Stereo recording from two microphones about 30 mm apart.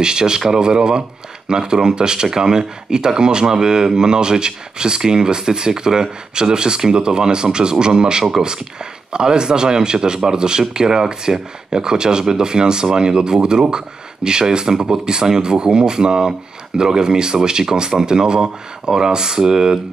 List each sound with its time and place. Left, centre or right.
0.0 s speech: right